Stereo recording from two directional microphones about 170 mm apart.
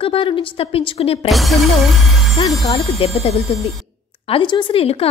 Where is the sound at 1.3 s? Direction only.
Centre (ahead or behind).